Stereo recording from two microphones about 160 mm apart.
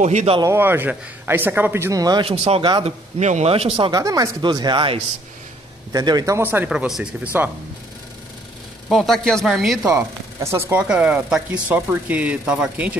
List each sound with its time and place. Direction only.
0.0 s speech: 45° right (ahead or behind)
0.4 s speech: 15° right (ahead or behind)
2.2 s speech: 40° right (ahead or behind)
4.0 s speech: 20° right (ahead or behind); by 7.2 s 5° right (ahead or behind)
8.8 s speech: centre (ahead or behind)
9.8 s speech: 15° right (ahead or behind)